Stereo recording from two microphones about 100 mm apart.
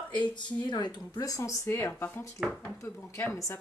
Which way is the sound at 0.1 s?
50° left (ahead or behind).